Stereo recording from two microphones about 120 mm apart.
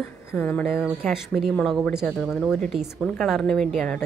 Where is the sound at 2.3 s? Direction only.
Centre (ahead or behind).